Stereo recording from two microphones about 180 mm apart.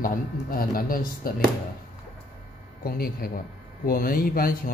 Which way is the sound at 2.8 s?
55° left (ahead or behind).